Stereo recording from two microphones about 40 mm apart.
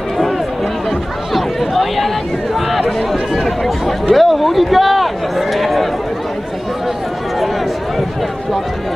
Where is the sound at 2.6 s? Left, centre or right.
Centre.